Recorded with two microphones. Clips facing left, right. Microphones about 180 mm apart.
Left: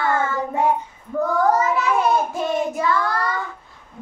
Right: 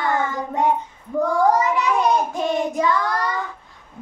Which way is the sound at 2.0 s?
20° right (ahead or behind).